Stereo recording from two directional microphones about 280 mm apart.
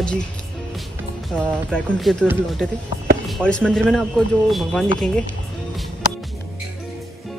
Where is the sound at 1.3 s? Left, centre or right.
Centre.